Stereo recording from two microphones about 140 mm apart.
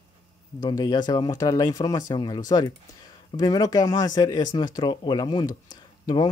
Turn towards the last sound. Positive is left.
turn(degrees=30)  # may be behind; listen again after turning